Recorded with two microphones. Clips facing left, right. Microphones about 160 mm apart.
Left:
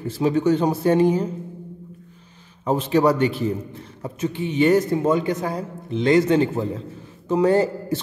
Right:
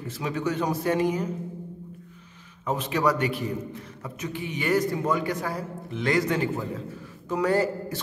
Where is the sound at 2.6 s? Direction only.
30° left (ahead or behind).